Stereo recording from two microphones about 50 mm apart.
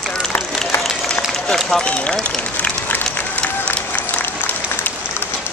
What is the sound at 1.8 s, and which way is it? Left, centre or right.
Speech, left.